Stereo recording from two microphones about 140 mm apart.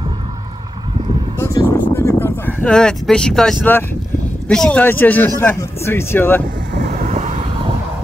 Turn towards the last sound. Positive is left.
turn(degrees=-60)  # may be behind; listen again after turning